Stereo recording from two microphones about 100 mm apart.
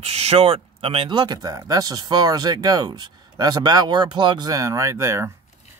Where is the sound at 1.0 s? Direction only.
50° right (ahead or behind).